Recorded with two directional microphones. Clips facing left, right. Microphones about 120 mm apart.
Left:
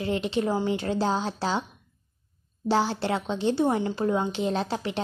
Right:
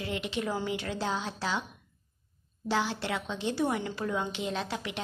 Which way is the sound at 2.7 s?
35° left (ahead or behind).